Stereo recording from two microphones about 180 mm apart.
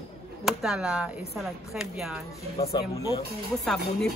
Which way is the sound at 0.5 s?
5° right (ahead or behind).